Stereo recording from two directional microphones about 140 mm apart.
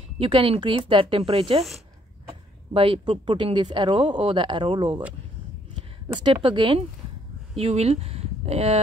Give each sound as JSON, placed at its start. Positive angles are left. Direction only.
{"t": 0.2, "sound": "speech", "side_deg": -40}
{"t": 2.7, "sound": "speech", "side_deg": -40}
{"t": 6.1, "sound": "speech", "side_deg": -35}
{"t": 7.5, "sound": "speech", "side_deg": -50}